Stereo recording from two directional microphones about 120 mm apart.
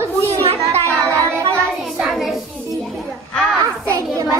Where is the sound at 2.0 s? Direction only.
5° right (ahead or behind).